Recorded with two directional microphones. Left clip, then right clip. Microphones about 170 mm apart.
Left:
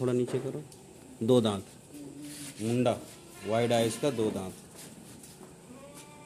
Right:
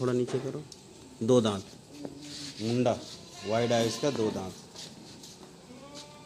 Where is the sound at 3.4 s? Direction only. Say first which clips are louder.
Even; 15° left (ahead or behind).